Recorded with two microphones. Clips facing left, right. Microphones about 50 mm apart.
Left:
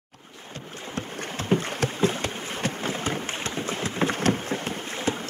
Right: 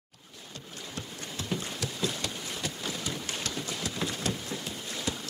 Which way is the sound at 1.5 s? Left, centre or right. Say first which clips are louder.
Left 11 dB; left.